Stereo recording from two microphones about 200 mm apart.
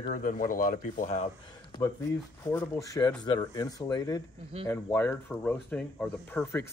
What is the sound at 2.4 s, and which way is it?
Speech, 15° left (ahead or behind).